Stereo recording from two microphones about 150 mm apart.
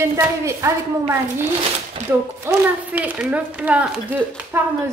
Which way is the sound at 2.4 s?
15° right (ahead or behind).